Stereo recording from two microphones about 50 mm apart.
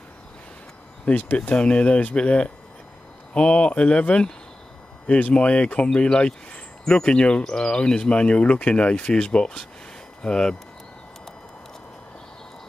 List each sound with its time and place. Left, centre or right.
1.0 s speech: left
1.6 s speech: left